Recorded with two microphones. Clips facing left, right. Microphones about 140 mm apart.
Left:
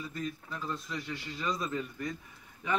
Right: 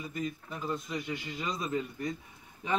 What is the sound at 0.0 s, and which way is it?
A man's voice, 15° right (ahead or behind).